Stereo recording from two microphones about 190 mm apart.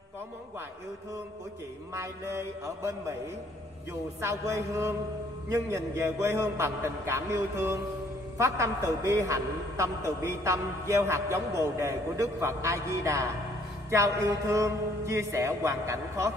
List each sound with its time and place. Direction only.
2.0 s a man's voice: 15° right (ahead or behind)
4.2 s a man's voice: 15° right (ahead or behind)